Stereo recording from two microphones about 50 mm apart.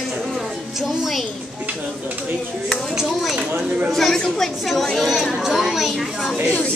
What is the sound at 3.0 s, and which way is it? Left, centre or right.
Speech, centre.